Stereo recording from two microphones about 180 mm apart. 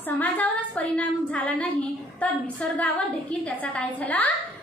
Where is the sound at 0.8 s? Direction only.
10° left (ahead or behind).